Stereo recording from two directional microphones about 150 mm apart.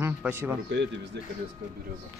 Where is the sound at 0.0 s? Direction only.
15° right (ahead or behind).